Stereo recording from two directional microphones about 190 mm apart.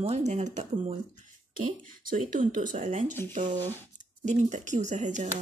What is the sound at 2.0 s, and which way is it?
Speech, 45° right (ahead or behind).